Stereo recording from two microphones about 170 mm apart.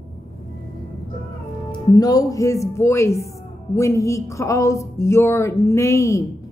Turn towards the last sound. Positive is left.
turn(degrees=20)  # may be behind; listen again after turning